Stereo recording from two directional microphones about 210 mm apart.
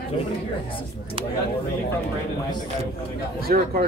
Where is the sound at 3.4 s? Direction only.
45° right (ahead or behind).